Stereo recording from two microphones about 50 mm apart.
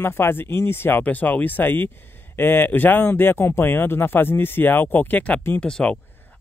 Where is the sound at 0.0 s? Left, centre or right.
Left.